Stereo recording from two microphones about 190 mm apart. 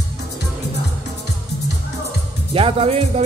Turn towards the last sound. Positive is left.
turn(degrees=-35)  # may be behind; listen again after turning